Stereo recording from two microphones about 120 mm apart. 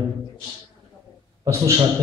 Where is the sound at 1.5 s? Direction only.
25° right (ahead or behind).